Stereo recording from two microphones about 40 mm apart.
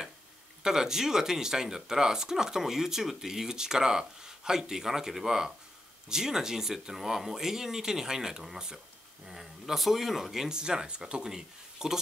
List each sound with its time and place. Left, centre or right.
0.7 s speech: centre
9.4 s speech: centre
10.5 s speech: centre